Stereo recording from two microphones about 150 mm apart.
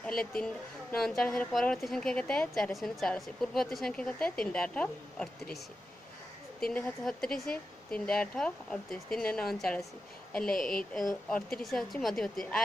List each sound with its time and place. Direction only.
0.0 s a woman's voice: 5° left (ahead or behind)
6.7 s speech: 5° left (ahead or behind)
10.6 s a woman's voice: 70° left (ahead or behind)
11.2 s speech: 5° left (ahead or behind)